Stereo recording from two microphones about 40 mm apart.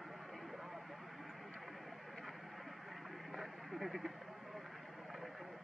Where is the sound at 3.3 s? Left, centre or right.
Centre.